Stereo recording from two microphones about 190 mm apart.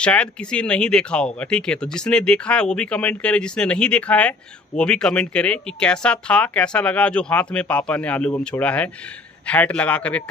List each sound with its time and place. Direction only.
0.0 s a man's voice: 5° left (ahead or behind)